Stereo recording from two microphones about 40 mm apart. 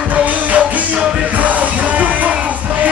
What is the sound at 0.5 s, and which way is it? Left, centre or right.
Music, right.